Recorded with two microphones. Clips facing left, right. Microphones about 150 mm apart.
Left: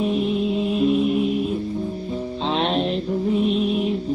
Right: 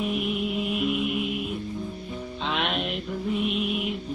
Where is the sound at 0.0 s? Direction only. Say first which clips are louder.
Left 6 dB; 30° left (ahead or behind).